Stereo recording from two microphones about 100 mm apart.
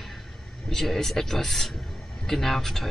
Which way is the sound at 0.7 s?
5° left (ahead or behind).